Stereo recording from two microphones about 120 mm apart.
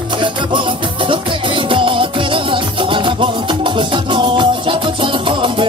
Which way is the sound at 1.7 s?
45° right (ahead or behind).